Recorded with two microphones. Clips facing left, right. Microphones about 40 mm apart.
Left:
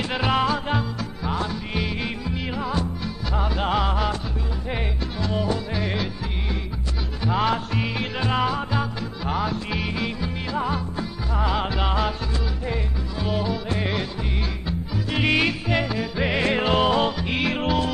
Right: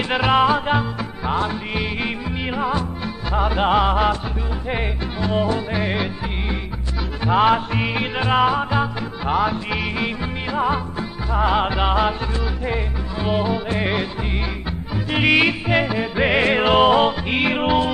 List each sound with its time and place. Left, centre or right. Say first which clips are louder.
0.3 s music: right 6 dB; right
7.2 s music: right 6 dB; right